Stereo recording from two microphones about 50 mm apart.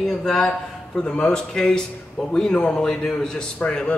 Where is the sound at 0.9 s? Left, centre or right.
Centre.